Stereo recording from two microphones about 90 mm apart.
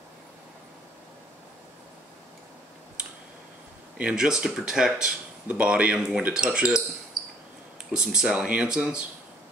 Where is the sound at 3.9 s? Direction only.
10° right (ahead or behind).